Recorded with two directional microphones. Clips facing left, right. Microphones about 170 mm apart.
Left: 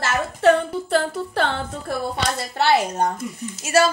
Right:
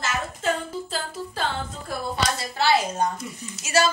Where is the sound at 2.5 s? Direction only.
60° left (ahead or behind).